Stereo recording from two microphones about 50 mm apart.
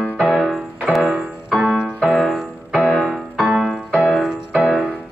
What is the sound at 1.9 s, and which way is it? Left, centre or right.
Music, centre.